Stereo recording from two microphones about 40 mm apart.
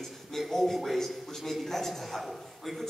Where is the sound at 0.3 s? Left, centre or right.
Centre.